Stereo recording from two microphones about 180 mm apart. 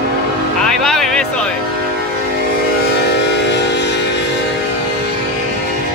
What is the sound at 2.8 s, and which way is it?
Train, 70° left (ahead or behind).